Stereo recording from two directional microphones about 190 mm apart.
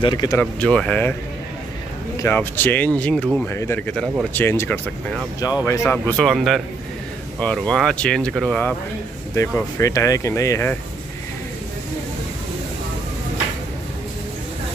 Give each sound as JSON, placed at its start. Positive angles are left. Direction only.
{"t": 0.0, "sound": "speech", "side_deg": 25}
{"t": 0.4, "sound": "speech", "side_deg": 5}
{"t": 2.1, "sound": "speech", "side_deg": 10}